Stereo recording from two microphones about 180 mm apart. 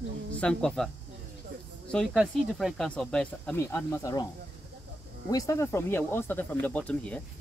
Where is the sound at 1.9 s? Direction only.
Centre (ahead or behind); by 4.2 s 20° left (ahead or behind).